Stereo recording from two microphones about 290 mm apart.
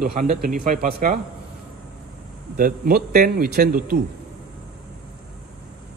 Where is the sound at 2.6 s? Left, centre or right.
Right.